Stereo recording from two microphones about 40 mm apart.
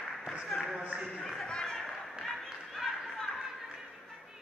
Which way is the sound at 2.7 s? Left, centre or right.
Centre.